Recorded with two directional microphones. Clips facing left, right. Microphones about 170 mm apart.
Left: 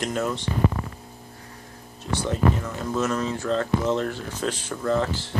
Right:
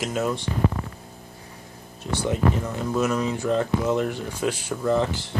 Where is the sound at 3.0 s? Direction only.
10° right (ahead or behind).